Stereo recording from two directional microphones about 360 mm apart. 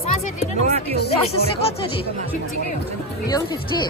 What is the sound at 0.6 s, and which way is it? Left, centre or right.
Speech, centre.